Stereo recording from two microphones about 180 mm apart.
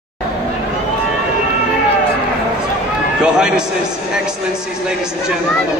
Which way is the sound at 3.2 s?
5° right (ahead or behind).